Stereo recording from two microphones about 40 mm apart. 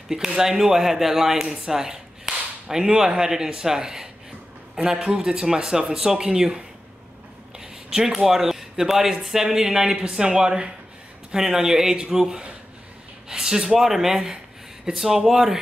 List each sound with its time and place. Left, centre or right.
0.4 s speech: centre
7.9 s speech: centre